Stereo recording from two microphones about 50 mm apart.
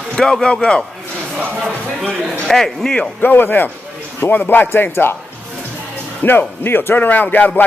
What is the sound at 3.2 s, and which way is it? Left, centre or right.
Speech, left.